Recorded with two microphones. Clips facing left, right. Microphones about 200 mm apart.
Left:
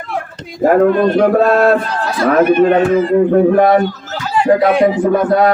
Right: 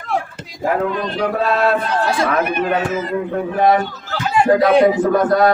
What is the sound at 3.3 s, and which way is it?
Speech, 50° left (ahead or behind).